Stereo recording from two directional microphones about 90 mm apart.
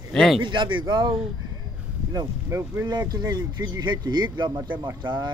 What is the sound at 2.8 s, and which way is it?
A man's voice, 50° right (ahead or behind).